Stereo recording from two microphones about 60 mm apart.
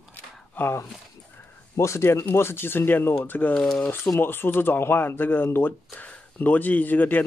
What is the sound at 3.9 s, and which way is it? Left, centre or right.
Speech, left.